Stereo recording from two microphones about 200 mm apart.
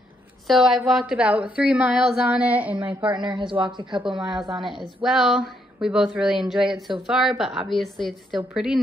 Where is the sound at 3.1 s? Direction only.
20° right (ahead or behind).